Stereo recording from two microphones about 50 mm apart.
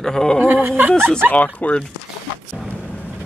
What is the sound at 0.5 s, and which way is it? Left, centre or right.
Speech, right.